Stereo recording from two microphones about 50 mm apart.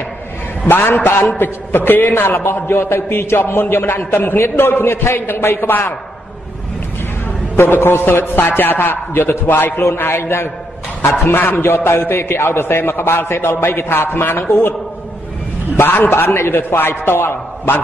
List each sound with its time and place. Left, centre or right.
0.7 s a man's voice: left
2.2 s speech: left
3.3 s a man's voice: left
5.7 s a man's voice: left
7.5 s a man's voice: left
10.1 s a man's voice: left
15.7 s a man's voice: left